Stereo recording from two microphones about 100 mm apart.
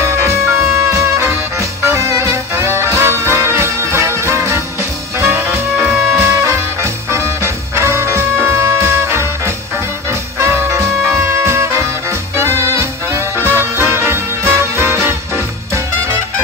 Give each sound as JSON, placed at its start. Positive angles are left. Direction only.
{"t": 0.0, "sound": "music", "side_deg": -30}
{"t": 10.4, "sound": "music", "side_deg": -30}